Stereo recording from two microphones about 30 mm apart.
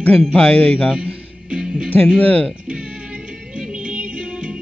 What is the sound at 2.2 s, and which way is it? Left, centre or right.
Speech, left.